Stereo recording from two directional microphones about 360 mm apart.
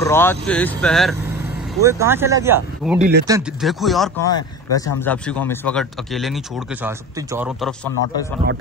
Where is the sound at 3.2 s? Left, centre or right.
Centre.